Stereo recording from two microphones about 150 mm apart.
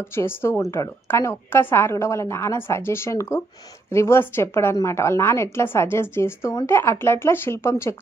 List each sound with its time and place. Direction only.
0.1 s a woman's voice: 15° left (ahead or behind)